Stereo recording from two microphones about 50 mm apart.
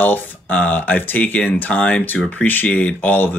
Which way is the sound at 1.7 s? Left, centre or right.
Left.